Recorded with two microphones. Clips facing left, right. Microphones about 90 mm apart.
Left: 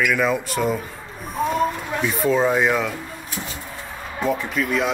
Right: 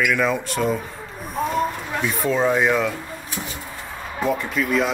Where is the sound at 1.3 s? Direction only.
Centre (ahead or behind).